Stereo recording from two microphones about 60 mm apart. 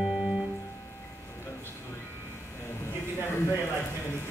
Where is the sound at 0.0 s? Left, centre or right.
Centre.